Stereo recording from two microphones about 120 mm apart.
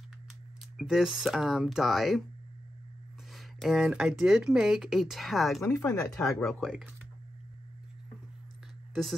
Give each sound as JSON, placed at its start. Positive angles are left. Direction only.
{"t": 0.7, "sound": "speech", "side_deg": -5}
{"t": 3.3, "sound": "speech", "side_deg": 0}
{"t": 5.6, "sound": "speech", "side_deg": 25}
{"t": 6.1, "sound": "speech", "side_deg": 0}